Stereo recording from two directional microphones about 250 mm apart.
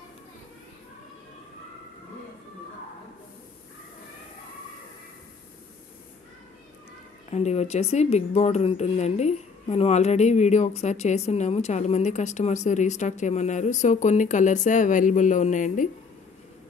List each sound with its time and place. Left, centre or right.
7.2 s a woman's voice: left